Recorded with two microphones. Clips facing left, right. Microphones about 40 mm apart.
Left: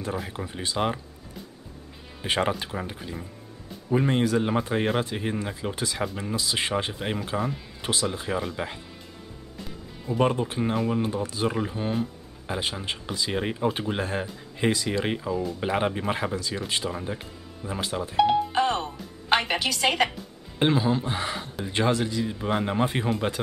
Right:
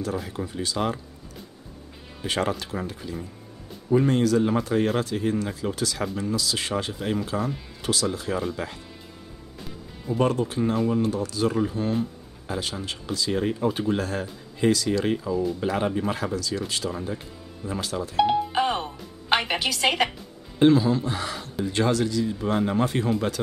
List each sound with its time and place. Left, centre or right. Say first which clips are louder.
0.0 s speech: right 2 dB; left
2.2 s speech: left 1 dB; left
10.1 s speech: right 1 dB; left
18.1 s music: even; centre
20.5 s speech: right 4 dB; left